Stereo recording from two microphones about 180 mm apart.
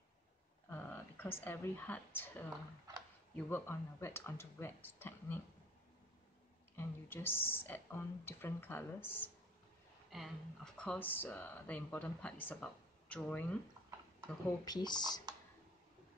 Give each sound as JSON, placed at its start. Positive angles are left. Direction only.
{"t": 0.7, "sound": "speech", "side_deg": 10}
{"t": 6.8, "sound": "speech", "side_deg": 10}
{"t": 10.0, "sound": "speech", "side_deg": 0}
{"t": 14.6, "sound": "speech", "side_deg": 25}